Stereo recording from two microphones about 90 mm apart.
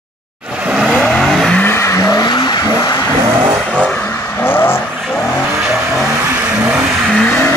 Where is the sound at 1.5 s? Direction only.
25° left (ahead or behind); by 2.2 s 40° left (ahead or behind).